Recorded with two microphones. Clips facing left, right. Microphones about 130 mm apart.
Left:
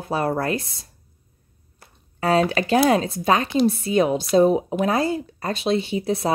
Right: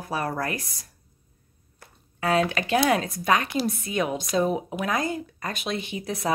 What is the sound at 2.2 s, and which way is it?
Speech, 30° left (ahead or behind).